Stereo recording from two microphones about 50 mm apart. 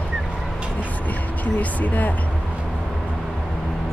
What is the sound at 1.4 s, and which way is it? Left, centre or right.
Speech, left.